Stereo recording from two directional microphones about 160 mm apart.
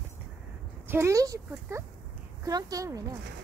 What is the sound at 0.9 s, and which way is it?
Speech, 15° right (ahead or behind).